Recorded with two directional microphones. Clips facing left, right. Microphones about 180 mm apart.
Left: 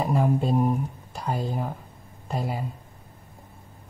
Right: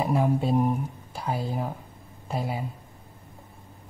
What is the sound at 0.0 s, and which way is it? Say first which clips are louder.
Speech: even; centre (ahead or behind).